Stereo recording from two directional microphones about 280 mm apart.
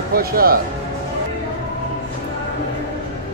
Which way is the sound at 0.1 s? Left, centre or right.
Right.